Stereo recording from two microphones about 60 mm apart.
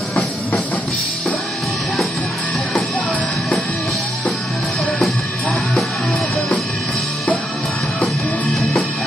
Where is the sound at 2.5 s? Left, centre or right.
Centre.